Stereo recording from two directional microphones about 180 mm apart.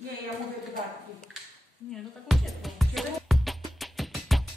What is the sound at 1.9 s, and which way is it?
Music, centre (ahead or behind).